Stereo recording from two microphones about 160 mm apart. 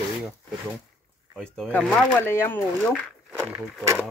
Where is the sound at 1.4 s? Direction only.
5° left (ahead or behind).